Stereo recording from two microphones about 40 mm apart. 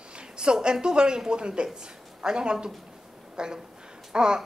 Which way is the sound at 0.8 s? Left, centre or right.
Centre.